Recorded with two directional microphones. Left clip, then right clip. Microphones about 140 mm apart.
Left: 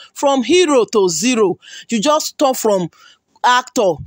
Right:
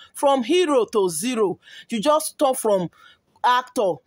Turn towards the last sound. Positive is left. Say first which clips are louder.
# left 6 dB
turn(degrees=45)  # may be behind; listen again after turning